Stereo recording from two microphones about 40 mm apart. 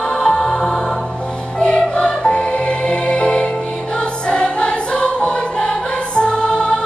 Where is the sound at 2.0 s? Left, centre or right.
Left.